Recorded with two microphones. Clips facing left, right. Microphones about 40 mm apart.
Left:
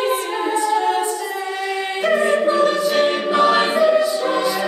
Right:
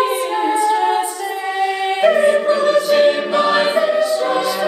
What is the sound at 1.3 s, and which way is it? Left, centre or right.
Choir, centre.